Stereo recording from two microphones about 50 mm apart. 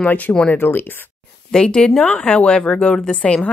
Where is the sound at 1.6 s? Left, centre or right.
Centre.